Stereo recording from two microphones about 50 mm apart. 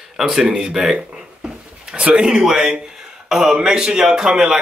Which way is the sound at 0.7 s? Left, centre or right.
Centre.